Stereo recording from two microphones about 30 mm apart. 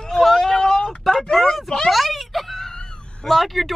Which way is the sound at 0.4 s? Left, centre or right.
Centre.